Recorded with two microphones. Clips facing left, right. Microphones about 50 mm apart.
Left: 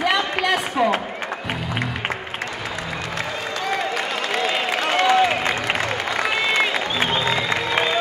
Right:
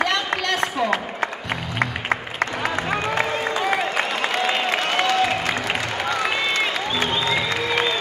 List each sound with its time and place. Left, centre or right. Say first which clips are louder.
0.0 s run: left 2 dB; centre
3.5 s applause: left 1 dB; centre
5.0 s applause: left 6 dB; left
6.5 s applause: left 2 dB; centre
7.2 s music: left 1 dB; left